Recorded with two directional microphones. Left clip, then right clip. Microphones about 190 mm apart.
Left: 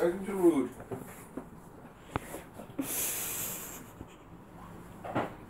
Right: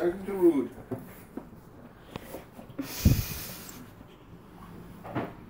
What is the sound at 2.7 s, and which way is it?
Snort, 15° left (ahead or behind).